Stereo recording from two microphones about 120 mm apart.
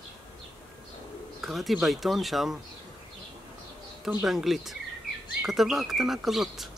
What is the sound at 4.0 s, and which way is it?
Speech, 5° right (ahead or behind).